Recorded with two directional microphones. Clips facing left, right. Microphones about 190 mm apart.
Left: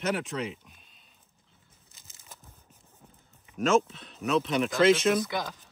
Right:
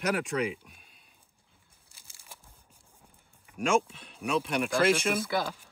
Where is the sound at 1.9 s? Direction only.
10° right (ahead or behind).